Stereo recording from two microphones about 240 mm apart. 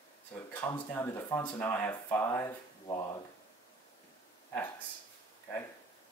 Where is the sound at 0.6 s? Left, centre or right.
Centre.